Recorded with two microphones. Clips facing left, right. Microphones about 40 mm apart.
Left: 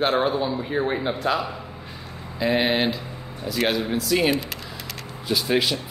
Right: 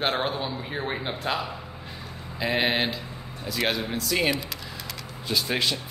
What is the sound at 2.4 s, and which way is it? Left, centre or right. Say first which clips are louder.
Speech: left 4 dB; centre.